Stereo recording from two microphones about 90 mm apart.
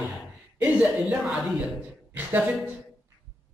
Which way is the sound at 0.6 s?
15° right (ahead or behind).